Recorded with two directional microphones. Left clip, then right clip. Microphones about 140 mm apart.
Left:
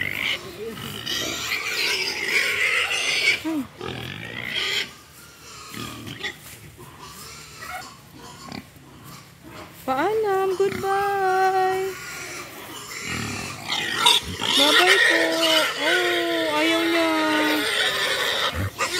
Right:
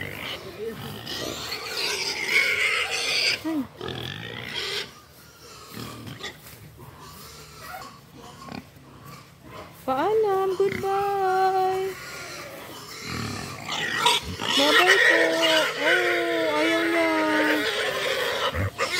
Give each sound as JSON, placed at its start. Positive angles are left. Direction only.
{"t": 0.0, "sound": "pig", "side_deg": -35}
{"t": 6.2, "sound": "pig", "side_deg": -35}
{"t": 9.8, "sound": "a sound", "side_deg": 0}
{"t": 13.7, "sound": "pig", "side_deg": 5}
{"t": 16.7, "sound": "neigh", "side_deg": 0}